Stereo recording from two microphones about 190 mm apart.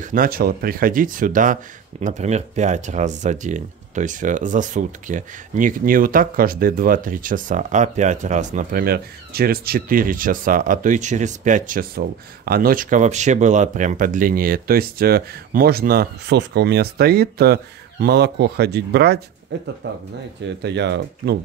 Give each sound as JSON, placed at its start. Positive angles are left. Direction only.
{"t": 0.0, "sound": "speech", "side_deg": -45}